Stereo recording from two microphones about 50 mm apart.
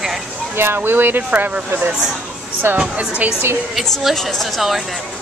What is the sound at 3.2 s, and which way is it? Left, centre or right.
Speech, right.